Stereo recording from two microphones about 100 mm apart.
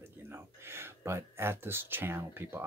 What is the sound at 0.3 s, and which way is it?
Speech, 25° right (ahead or behind).